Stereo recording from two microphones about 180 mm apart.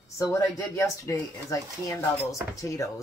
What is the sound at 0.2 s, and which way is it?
Speech, 15° left (ahead or behind).